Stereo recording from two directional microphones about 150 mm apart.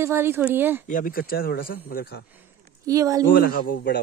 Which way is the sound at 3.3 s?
75° left (ahead or behind).